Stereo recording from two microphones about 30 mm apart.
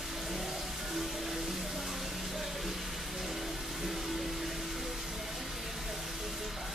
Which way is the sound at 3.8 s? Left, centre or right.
Centre.